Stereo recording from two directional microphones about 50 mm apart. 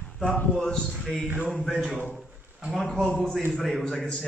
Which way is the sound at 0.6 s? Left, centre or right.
Centre.